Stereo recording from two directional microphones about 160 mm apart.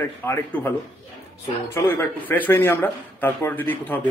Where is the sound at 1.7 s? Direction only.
15° left (ahead or behind).